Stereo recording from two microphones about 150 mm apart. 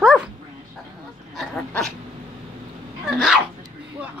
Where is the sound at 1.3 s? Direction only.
5° left (ahead or behind).